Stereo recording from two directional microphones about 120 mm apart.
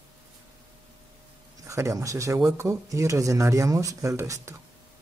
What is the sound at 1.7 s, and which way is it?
Speech, 25° right (ahead or behind).